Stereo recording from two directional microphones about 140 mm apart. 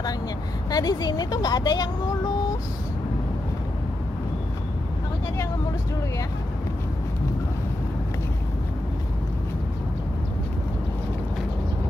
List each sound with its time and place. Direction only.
0.7 s speech: 30° left (ahead or behind)